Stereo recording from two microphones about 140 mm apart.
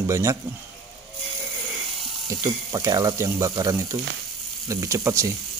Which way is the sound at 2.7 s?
25° right (ahead or behind).